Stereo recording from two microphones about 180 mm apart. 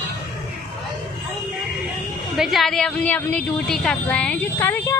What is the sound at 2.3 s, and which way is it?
A woman's voice, centre (ahead or behind).